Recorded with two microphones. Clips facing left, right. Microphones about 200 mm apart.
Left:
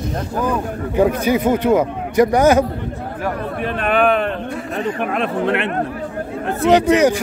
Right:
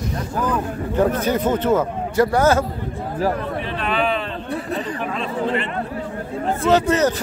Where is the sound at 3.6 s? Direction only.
55° left (ahead or behind).